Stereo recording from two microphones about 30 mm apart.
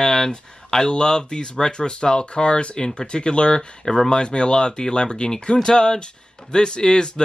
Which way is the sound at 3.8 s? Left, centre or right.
Centre.